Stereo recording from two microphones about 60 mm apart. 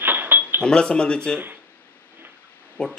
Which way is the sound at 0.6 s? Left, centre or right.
Centre.